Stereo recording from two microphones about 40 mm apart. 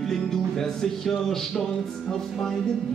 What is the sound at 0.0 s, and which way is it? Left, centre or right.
Music, centre.